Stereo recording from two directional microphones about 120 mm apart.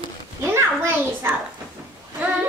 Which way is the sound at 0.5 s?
20° right (ahead or behind).